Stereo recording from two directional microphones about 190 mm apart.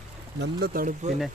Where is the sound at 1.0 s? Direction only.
40° right (ahead or behind).